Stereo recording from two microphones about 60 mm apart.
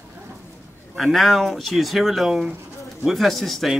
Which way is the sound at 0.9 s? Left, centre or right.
Centre.